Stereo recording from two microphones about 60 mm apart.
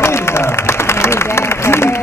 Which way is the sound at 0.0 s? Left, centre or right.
Left.